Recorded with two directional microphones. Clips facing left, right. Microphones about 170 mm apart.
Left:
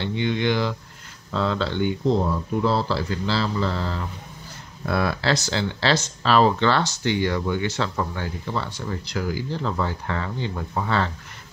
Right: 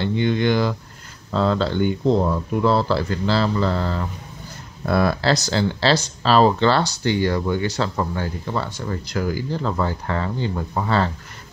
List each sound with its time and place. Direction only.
0.0 s speech: 45° right (ahead or behind)
2.6 s a man's voice: 55° right (ahead or behind)
4.8 s speech: 45° right (ahead or behind)